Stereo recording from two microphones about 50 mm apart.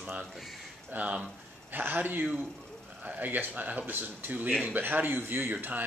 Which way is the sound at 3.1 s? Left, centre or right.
Right.